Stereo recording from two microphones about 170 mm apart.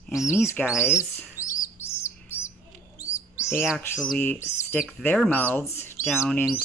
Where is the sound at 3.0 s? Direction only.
15° left (ahead or behind).